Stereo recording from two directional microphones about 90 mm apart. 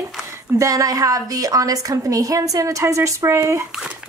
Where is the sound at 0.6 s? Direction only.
40° right (ahead or behind).